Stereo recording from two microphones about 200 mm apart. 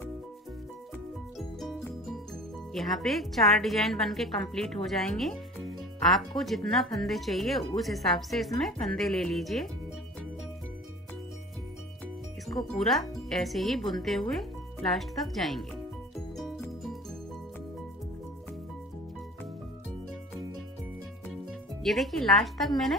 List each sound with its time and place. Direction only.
1.6 s music: centre (ahead or behind)
2.7 s a woman's voice: centre (ahead or behind)
12.4 s a woman's voice: centre (ahead or behind)
21.8 s a woman's voice: centre (ahead or behind)